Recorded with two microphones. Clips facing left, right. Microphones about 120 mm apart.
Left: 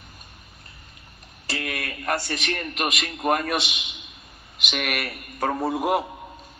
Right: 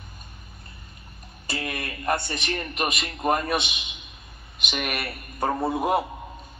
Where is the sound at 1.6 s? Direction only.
35° right (ahead or behind).